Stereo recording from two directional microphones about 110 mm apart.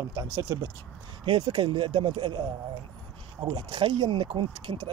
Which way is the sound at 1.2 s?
50° right (ahead or behind).